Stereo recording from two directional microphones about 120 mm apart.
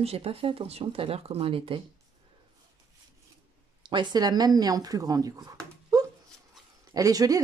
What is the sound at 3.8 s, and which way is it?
Speech, 40° right (ahead or behind).